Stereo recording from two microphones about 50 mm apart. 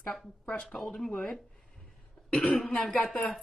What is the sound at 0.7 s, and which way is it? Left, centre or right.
Speech, centre.